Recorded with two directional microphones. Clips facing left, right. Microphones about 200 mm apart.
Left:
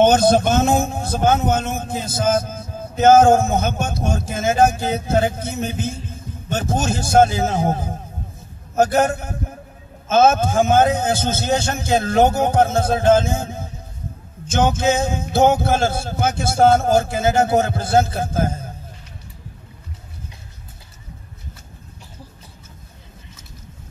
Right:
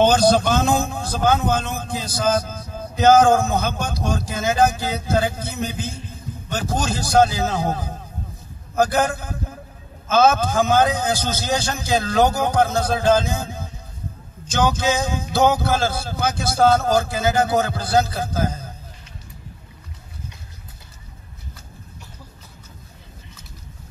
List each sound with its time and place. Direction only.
0.0 s a man's voice: 20° left (ahead or behind)
6.7 s a man's voice: 25° left (ahead or behind)
13.3 s music: 25° left (ahead or behind)
14.9 s a man's voice: 25° left (ahead or behind)